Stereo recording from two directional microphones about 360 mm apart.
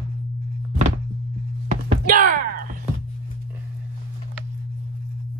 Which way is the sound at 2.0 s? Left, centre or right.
Right.